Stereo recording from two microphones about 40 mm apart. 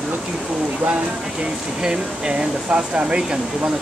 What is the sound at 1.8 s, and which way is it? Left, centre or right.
Speech, centre.